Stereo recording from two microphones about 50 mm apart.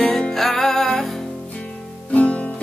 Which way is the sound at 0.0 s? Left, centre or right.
Centre.